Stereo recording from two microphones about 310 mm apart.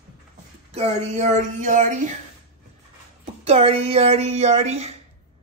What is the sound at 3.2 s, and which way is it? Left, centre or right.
Speech, right.